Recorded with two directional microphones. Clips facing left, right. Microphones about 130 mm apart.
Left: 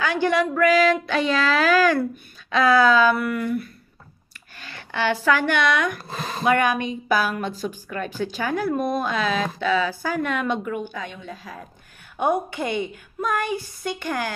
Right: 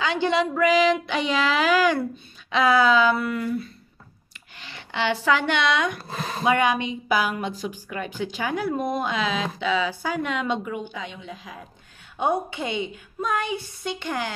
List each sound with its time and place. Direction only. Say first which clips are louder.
0.0 s a woman's voice: left 1 dB; 25° right (ahead or behind)
4.6 s a woman's voice: left 1 dB; 20° right (ahead or behind)